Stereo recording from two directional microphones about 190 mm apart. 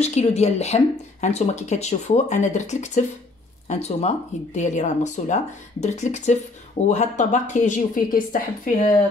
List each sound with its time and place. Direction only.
0.0 s speech: 35° left (ahead or behind)